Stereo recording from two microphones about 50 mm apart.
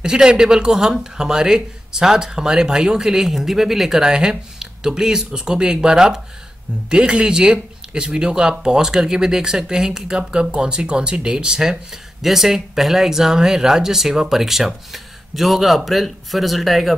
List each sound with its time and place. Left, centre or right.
0.0 s speech: centre